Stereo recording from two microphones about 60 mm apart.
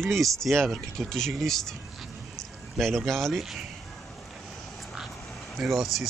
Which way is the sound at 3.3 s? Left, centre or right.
Centre.